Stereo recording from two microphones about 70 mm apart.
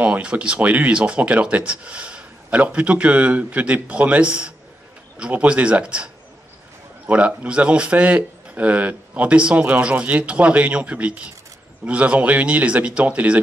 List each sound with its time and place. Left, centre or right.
0.0 s speech: centre
7.1 s speech: centre